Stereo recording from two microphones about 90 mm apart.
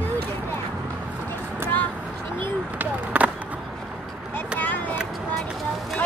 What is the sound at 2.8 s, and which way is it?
Skateboard, 15° right (ahead or behind).